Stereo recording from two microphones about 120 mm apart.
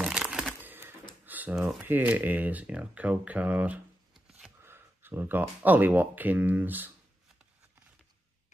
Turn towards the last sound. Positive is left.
turn(degrees=-15)  # may be behind; listen again after turning